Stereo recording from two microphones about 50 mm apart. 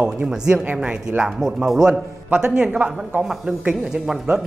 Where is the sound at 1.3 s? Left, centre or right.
Centre.